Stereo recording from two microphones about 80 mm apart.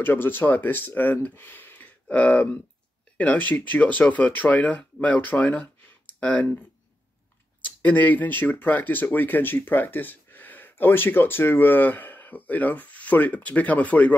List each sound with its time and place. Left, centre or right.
0.0 s speech: left
7.8 s speech: left